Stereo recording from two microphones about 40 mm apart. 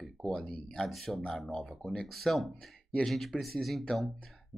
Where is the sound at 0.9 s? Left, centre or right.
Centre.